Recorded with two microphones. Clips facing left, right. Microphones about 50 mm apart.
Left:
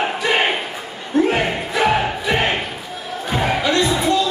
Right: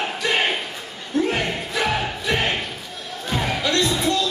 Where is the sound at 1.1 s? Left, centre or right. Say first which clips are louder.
Left 5 dB; centre.